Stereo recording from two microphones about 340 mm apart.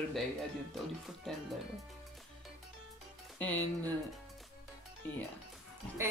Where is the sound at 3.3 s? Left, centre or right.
Centre.